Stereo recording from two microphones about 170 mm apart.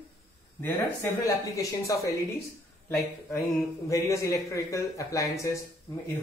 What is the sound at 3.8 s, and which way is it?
A woman's voice, 20° left (ahead or behind).